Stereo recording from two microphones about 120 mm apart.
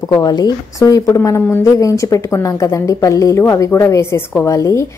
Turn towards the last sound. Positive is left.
turn(degrees=25)  # may be behind; listen again after turning